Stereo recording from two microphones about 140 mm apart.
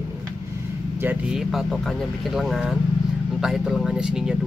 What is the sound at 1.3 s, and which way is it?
Speech, centre (ahead or behind).